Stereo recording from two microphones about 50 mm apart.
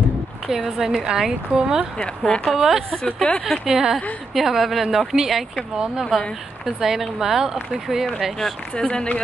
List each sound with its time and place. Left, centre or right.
0.5 s speech: centre
2.0 s speech: centre
2.5 s a woman's voice: centre
8.7 s speech: left